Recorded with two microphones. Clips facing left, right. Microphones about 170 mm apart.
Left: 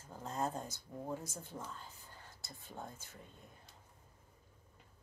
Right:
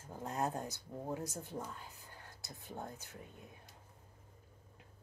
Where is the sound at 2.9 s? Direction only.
75° right (ahead or behind).